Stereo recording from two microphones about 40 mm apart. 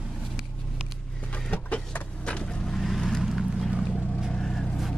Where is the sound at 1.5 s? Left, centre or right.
Left.